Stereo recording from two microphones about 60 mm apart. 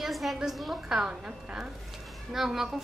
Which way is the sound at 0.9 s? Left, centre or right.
Centre.